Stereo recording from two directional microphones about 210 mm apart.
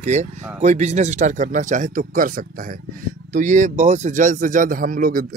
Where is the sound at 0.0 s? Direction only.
35° right (ahead or behind).